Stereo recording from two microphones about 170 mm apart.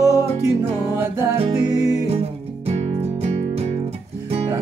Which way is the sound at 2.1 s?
35° right (ahead or behind).